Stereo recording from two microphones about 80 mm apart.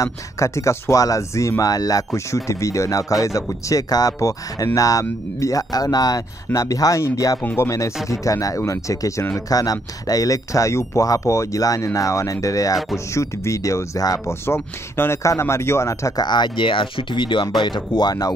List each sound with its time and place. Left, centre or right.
0.0 s speech: left
2.1 s speech: left
6.5 s speech: left
14.2 s speech: left
16.2 s speech: left
17.6 s speech: left